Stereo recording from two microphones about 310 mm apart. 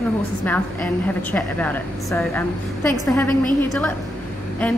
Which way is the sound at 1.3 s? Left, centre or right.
Centre.